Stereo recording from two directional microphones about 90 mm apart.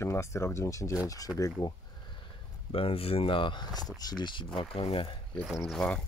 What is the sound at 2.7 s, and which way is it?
Speech, 90° left.